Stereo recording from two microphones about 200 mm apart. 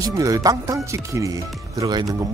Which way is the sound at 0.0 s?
15° right (ahead or behind).